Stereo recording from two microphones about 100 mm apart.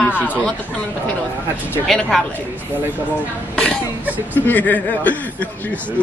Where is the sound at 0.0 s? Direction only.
15° left (ahead or behind).